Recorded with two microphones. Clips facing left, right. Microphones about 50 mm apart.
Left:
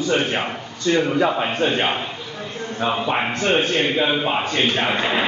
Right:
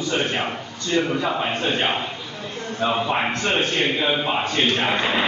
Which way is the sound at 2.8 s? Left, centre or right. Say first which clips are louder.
Even; centre.